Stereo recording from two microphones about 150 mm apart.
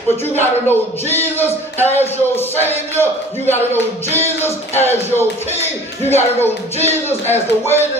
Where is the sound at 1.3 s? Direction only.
15° right (ahead or behind).